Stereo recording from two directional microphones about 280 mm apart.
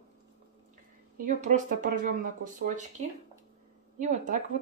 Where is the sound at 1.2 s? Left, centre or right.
Right.